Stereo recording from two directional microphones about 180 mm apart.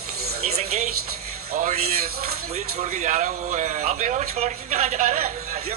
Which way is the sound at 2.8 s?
40° right (ahead or behind).